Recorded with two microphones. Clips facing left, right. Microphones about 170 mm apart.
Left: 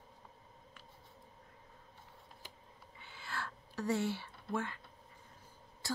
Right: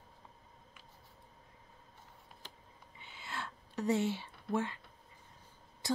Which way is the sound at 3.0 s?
20° right (ahead or behind).